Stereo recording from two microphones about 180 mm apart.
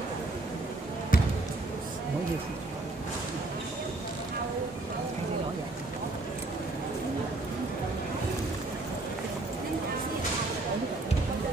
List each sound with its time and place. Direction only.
1.1 s basketball bounce: 50° left (ahead or behind)